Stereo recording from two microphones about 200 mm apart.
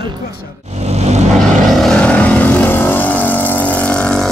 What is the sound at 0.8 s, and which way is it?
Vehicle, 35° right (ahead or behind).